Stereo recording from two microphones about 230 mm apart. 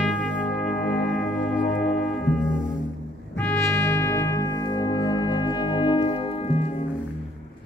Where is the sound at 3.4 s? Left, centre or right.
Centre; by 6.7 s left.